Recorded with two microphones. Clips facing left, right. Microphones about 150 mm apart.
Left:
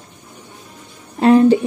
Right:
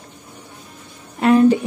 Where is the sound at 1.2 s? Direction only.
30° left (ahead or behind).